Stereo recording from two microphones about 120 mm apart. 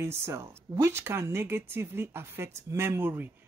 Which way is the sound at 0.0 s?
20° right (ahead or behind).